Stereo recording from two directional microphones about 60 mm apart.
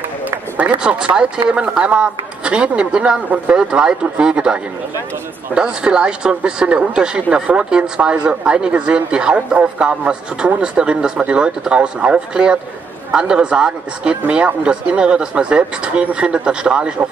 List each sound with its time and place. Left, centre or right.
0.6 s speech: centre